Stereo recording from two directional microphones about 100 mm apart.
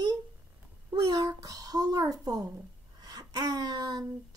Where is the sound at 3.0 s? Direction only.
40° right (ahead or behind).